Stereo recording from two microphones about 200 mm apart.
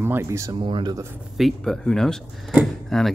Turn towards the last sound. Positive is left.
turn(degrees=0)  # may be behind; listen again after turning